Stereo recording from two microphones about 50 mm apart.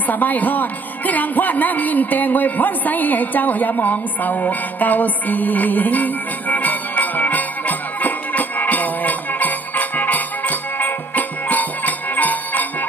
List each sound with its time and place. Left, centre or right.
0.1 s music: left